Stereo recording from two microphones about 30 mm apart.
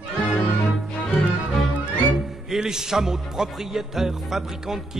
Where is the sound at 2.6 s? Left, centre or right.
Right.